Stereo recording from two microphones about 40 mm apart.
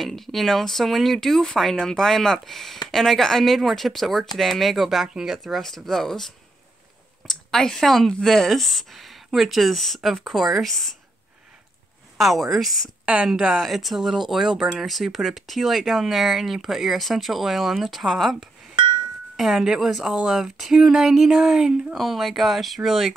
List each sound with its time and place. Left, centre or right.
0.0 s a woman's voice: centre
5.4 s speech: centre
10.7 s speech: centre
12.2 s speech: centre
13.0 s speech: right
13.6 s a woman's voice: centre
21.9 s speech: centre